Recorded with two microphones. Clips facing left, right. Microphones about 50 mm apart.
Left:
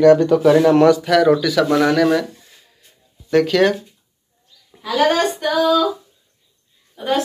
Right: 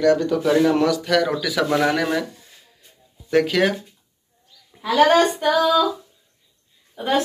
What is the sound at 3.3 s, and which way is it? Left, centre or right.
Speech, centre.